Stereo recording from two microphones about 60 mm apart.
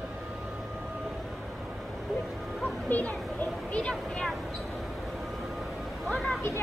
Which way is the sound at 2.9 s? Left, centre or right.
Left.